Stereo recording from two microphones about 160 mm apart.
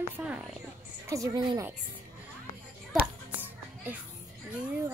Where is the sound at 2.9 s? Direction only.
10° right (ahead or behind).